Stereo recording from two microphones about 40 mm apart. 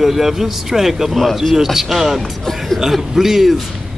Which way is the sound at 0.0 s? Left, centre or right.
Centre.